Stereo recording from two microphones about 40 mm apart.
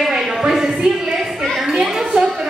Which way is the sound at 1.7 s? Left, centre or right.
Centre.